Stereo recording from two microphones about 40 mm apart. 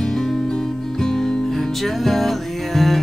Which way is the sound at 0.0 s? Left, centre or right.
Centre.